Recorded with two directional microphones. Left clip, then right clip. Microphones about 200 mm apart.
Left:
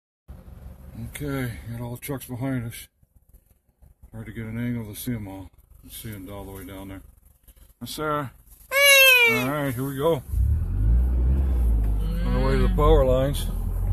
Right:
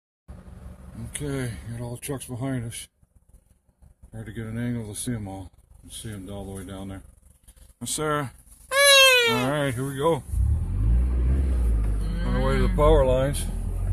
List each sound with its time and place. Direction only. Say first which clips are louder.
0.9 s speech: left 1 dB; 10° right (ahead or behind)
4.1 s speech: even; 15° right (ahead or behind)
8.6 s baby cry: left 1 dB; 5° left (ahead or behind)
9.5 s speech: right 1 dB; 15° right (ahead or behind)
9.8 s speech: left 2 dB; 5° right (ahead or behind)
12.3 s speech: even; centre (ahead or behind)